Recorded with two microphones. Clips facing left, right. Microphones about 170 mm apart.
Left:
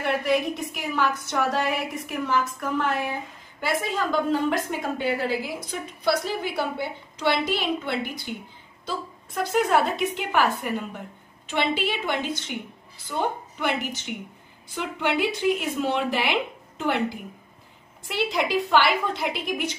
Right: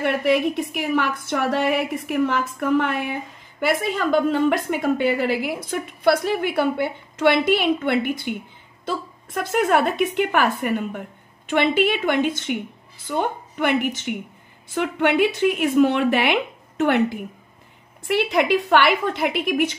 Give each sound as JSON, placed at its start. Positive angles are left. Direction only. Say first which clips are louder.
{"t": 0.0, "sound": "a woman's voice", "louder": "right 4 dB", "side_deg": -65}